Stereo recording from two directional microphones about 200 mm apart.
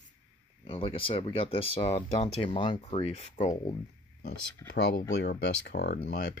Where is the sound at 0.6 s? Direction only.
30° left (ahead or behind).